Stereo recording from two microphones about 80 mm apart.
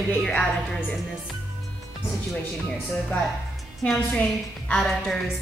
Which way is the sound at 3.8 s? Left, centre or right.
Centre.